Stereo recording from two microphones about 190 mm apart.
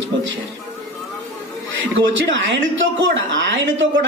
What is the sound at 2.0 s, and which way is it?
A man's voice, 75° right (ahead or behind).